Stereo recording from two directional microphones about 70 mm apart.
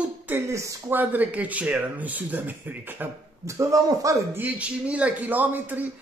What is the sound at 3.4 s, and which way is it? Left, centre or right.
Speech, right.